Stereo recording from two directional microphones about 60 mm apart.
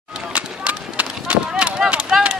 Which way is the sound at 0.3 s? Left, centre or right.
Right.